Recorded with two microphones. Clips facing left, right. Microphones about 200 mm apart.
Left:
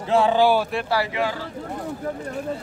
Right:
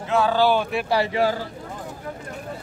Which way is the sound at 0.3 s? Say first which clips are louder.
Even; 10° left (ahead or behind).